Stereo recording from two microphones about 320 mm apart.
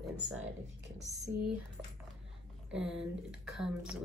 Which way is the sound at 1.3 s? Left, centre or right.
Right.